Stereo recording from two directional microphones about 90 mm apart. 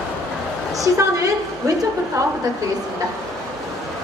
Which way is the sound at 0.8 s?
40° right (ahead or behind).